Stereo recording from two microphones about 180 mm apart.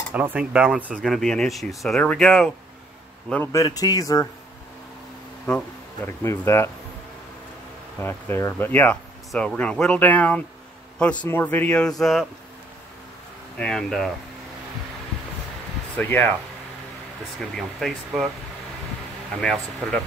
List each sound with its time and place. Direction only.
0.1 s a man's voice: 10° right (ahead or behind); by 4.3 s 20° left (ahead or behind)
6.0 s speech: 15° left (ahead or behind)
8.0 s speech: 10° left (ahead or behind)
13.6 s speech: 5° left (ahead or behind)
16.0 s speech: 10° left (ahead or behind)
17.4 s speech: centre (ahead or behind)
19.4 s speech: 5° left (ahead or behind)